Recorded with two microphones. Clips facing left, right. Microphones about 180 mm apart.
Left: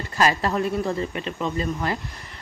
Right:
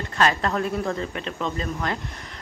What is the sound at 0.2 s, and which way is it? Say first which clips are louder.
A woman's voice: left 1 dB; 5° left (ahead or behind).